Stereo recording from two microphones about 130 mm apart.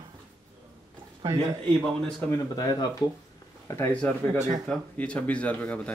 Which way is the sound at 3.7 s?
20° left (ahead or behind).